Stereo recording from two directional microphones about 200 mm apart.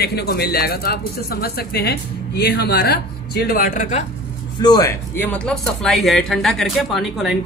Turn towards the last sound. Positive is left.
turn(degrees=0)  # may be behind; listen again after turning